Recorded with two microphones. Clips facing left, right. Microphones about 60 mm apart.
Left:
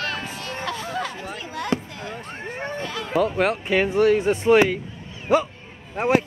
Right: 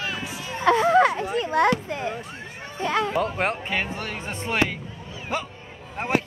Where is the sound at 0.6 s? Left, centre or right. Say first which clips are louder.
Right 13 dB; right.